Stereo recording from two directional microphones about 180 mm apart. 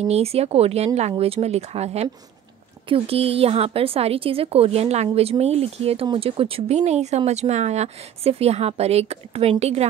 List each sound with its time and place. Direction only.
0.0 s a woman's voice: 35° right (ahead or behind)